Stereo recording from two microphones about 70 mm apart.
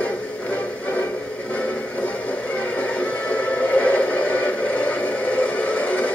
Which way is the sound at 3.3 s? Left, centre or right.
Left.